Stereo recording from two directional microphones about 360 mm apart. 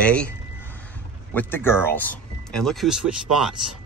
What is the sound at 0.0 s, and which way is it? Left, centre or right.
Speech, centre.